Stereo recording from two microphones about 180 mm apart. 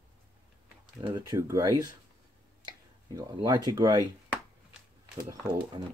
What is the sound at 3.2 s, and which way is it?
Speech, 25° right (ahead or behind).